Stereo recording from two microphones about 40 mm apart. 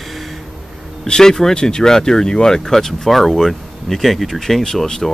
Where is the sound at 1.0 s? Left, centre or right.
Centre.